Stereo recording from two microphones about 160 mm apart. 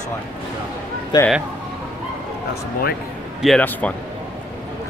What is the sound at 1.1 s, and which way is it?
Speech, 25° left (ahead or behind).